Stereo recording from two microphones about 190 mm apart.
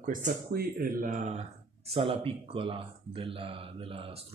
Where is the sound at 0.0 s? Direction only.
45° right (ahead or behind).